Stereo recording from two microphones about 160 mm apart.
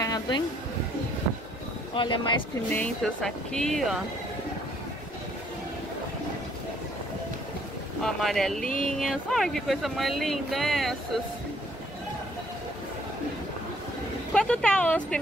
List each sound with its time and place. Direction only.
0.0 s a sound: 25° left (ahead or behind)
2.0 s speech: 30° left (ahead or behind)
2.7 s speech: 5° left (ahead or behind)
8.0 s speech: centre (ahead or behind)
14.3 s speech: 5° left (ahead or behind)